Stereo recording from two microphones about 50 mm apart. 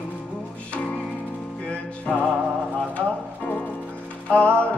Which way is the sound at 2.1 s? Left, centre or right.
Left.